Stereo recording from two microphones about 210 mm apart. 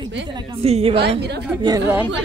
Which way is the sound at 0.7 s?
30° right (ahead or behind).